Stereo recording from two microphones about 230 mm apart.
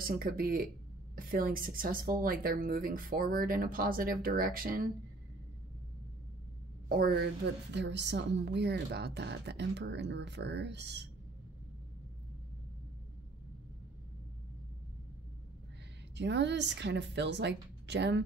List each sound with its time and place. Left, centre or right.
0.0 s a woman's voice: right
6.9 s a woman's voice: right
16.2 s speech: right